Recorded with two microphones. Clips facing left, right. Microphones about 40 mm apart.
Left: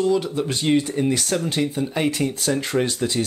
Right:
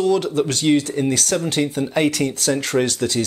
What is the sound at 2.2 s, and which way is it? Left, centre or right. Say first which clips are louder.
Speech: right 2 dB; right.